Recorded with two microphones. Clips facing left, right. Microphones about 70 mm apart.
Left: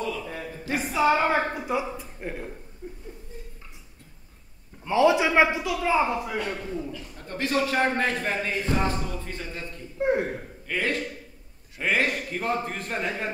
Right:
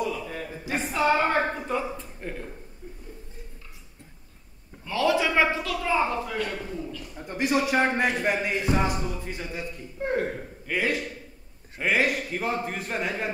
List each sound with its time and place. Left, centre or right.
0.7 s a man's voice: centre
4.8 s a man's voice: left
7.2 s a man's voice: centre
9.9 s speech: centre
10.7 s a man's voice: centre